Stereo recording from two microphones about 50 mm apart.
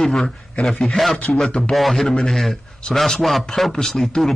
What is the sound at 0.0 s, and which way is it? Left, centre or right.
A man's voice, centre.